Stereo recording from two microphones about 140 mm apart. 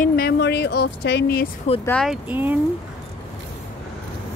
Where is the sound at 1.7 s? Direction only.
55° left (ahead or behind).